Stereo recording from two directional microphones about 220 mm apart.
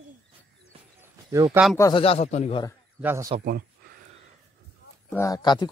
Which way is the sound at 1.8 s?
20° left (ahead or behind).